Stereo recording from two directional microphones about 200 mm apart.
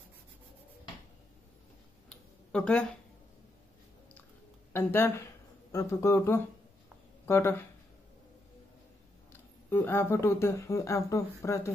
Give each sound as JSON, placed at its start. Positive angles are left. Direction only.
{"t": 2.0, "sound": "a sound", "side_deg": 5}
{"t": 4.7, "sound": "speech", "side_deg": 10}
{"t": 9.7, "sound": "speech", "side_deg": 10}